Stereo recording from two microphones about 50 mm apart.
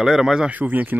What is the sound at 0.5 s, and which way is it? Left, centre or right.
Speech, right.